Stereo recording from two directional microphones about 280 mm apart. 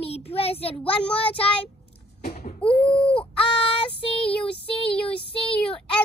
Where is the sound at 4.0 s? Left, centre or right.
Centre.